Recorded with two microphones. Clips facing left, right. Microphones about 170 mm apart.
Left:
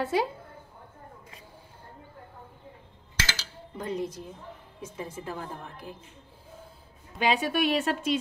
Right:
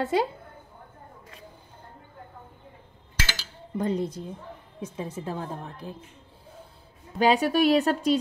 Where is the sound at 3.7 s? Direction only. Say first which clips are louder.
Right 5 dB; 25° right (ahead or behind).